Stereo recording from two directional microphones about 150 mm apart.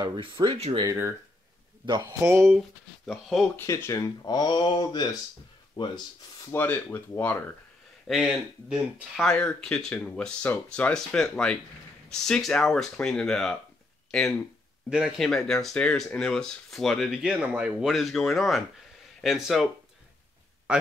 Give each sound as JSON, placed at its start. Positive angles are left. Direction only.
{"t": 0.0, "sound": "speech", "side_deg": -30}
{"t": 2.2, "sound": "speech", "side_deg": -15}
{"t": 3.1, "sound": "speech", "side_deg": 0}
{"t": 3.5, "sound": "speech", "side_deg": 20}
{"t": 6.5, "sound": "speech", "side_deg": 10}
{"t": 8.1, "sound": "speech", "side_deg": -10}
{"t": 9.2, "sound": "speech", "side_deg": 5}
{"t": 14.9, "sound": "speech", "side_deg": -5}